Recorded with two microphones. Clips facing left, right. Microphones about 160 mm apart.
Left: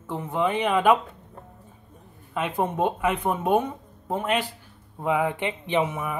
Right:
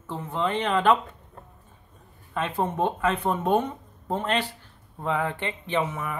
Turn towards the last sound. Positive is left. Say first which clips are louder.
# left 2 dB
turn(degrees=15)  # may be behind; listen again after turning